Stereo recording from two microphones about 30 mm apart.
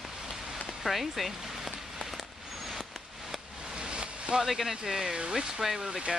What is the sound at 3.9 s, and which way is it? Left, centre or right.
Boat, right.